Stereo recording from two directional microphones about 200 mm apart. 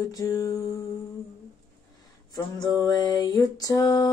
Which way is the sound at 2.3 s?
20° left (ahead or behind).